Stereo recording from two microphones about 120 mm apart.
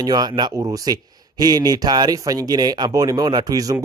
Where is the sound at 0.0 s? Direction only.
35° right (ahead or behind).